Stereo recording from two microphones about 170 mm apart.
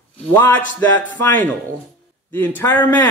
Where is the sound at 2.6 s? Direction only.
10° left (ahead or behind).